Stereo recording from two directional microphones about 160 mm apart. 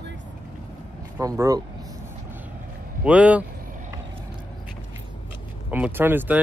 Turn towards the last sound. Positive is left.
turn(degrees=-10)  # may be behind; listen again after turning